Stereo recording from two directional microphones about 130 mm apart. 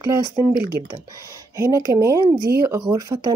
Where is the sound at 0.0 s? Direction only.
25° right (ahead or behind).